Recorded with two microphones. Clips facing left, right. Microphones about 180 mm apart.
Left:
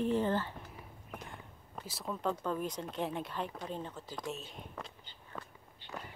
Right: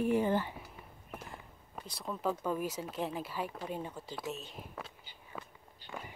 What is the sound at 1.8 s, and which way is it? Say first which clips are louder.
Speech: right 1 dB; centre (ahead or behind).